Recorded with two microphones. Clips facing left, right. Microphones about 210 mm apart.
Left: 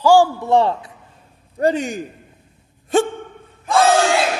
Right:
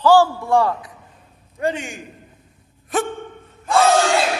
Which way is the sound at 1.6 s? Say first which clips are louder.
Left 5 dB; 40° left (ahead or behind).